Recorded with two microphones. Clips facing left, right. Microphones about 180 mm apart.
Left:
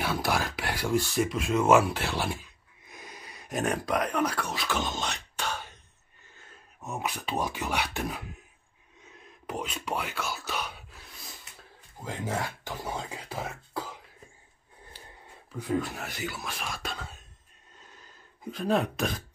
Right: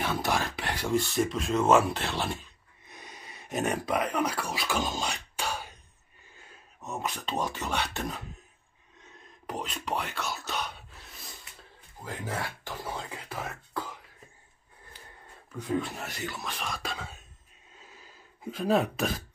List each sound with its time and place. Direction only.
0.0 s speech: 5° left (ahead or behind)
6.8 s speech: 10° left (ahead or behind)
9.5 s speech: centre (ahead or behind)
12.0 s speech: 15° left (ahead or behind)
15.5 s speech: 10° left (ahead or behind)
17.7 s a sound: 5° right (ahead or behind)